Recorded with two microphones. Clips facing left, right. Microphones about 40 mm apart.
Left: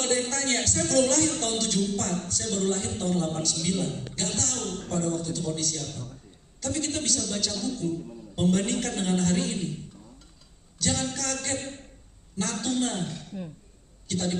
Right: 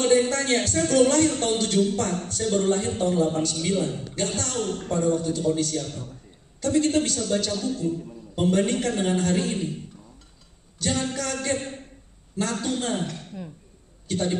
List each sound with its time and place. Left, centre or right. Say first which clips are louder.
0.0 s a man's voice: right 7 dB; centre
10.8 s speech: right 3 dB; centre
14.0 s a man's voice: right 4 dB; centre